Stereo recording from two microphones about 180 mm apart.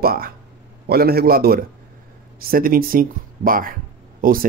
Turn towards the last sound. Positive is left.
turn(degrees=-50)  # may be behind; listen again after turning